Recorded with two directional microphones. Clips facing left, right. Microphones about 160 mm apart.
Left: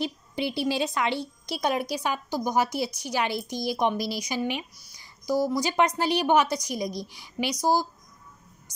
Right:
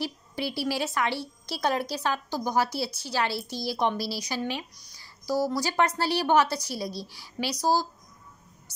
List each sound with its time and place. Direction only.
0.0 s a woman's voice: 20° left (ahead or behind)